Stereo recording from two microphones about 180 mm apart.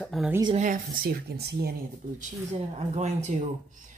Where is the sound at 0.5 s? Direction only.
45° right (ahead or behind); by 1.7 s 60° right (ahead or behind).